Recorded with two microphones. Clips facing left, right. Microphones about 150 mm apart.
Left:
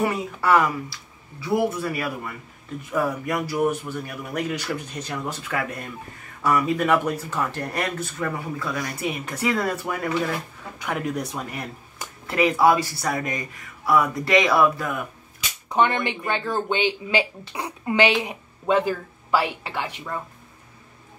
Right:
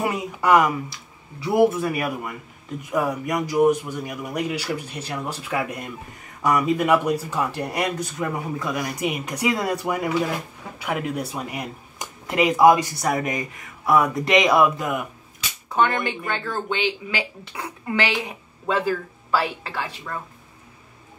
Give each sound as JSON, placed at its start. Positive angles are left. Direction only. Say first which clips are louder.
{"t": 0.0, "sound": "a man's voice", "louder": "even", "side_deg": -15}
{"t": 15.7, "sound": "speech", "louder": "even", "side_deg": 20}